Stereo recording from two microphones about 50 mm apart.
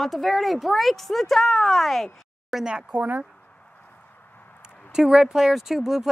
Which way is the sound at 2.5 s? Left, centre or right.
Centre.